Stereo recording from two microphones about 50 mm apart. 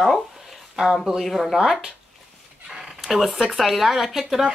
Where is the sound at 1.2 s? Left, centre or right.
Centre.